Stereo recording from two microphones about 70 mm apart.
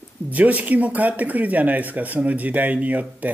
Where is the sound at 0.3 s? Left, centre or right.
Right.